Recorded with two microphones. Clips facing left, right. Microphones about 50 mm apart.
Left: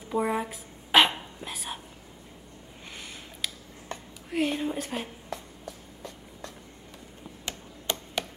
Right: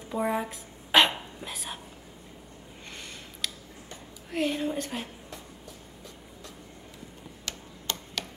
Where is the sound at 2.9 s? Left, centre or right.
Centre.